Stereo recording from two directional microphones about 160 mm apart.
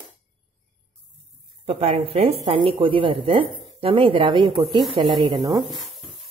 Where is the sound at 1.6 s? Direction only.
40° right (ahead or behind); by 5.6 s 25° right (ahead or behind).